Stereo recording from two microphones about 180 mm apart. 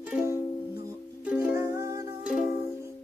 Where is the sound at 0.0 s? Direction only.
10° right (ahead or behind).